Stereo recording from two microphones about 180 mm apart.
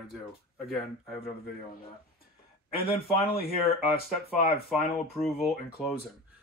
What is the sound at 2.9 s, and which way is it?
Speech, 55° left (ahead or behind).